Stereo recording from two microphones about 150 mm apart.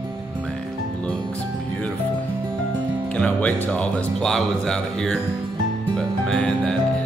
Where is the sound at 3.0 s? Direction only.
10° left (ahead or behind).